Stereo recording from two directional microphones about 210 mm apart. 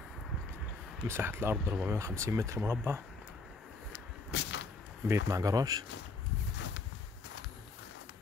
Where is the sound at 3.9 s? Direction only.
60° left (ahead or behind).